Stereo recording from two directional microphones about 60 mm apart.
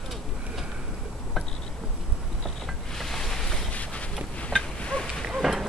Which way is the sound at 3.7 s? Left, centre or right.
Left.